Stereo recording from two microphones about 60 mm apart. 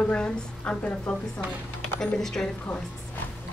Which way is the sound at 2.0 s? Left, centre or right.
Centre.